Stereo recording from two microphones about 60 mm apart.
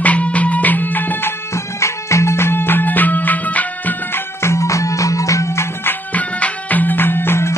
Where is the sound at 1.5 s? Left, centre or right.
Left.